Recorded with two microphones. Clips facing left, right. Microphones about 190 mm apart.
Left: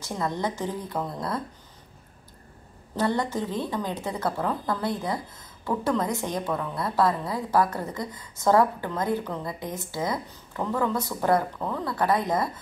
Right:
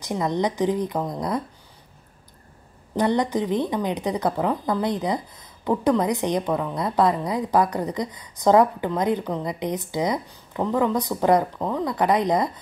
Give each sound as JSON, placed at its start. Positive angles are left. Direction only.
{"t": 0.0, "sound": "a woman's voice", "side_deg": -15}
{"t": 3.0, "sound": "a woman's voice", "side_deg": -15}